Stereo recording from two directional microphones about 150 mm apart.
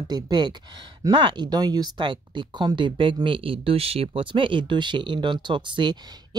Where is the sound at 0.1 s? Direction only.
30° right (ahead or behind).